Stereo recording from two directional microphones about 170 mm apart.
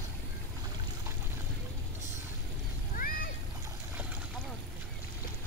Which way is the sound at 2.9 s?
55° left (ahead or behind).